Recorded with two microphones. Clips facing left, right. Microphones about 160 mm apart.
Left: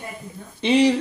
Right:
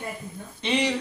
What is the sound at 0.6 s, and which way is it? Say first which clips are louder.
Speech: left 8 dB; 35° left (ahead or behind).